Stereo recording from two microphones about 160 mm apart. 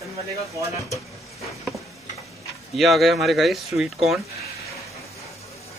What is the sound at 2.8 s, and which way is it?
Speech, centre (ahead or behind).